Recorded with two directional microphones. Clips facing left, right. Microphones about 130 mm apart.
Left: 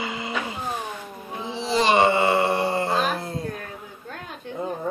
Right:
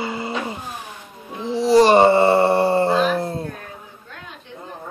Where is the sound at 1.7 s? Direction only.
40° right (ahead or behind).